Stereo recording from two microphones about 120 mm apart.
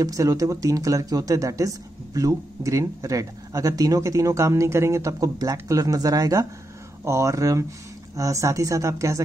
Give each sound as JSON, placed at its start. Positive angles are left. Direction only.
{"t": 0.0, "sound": "speech", "side_deg": -30}